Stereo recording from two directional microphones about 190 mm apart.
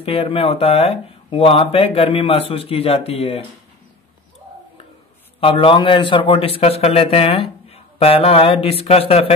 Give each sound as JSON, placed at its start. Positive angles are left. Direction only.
{"t": 0.0, "sound": "speech", "side_deg": 30}
{"t": 5.4, "sound": "speech", "side_deg": 30}